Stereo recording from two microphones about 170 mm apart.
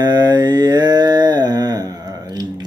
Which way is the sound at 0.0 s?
25° right (ahead or behind).